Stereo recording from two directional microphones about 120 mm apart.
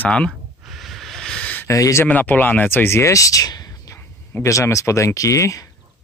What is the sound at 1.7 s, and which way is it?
Speech, 25° left (ahead or behind).